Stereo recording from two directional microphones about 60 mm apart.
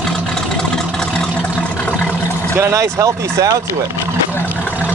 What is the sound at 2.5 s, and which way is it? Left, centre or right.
Speech, right.